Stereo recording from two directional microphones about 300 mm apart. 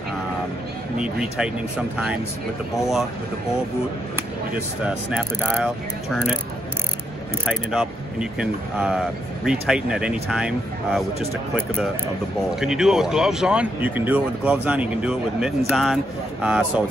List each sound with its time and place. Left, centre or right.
0.9 s speech: centre
4.8 s speech: centre
7.4 s speech: centre
12.4 s speech: centre